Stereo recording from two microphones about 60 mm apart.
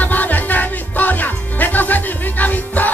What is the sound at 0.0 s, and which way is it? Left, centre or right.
Music, left.